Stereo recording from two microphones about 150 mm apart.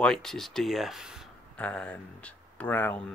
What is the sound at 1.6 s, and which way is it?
Speech, 10° left (ahead or behind).